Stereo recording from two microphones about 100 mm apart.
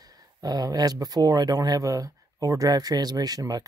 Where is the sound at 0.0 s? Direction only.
40° right (ahead or behind).